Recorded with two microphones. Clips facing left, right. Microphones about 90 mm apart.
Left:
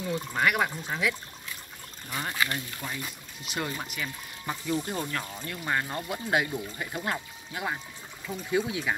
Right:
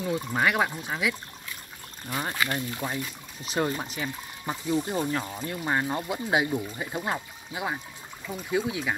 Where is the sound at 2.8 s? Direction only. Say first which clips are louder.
Right 5 dB; 20° right (ahead or behind).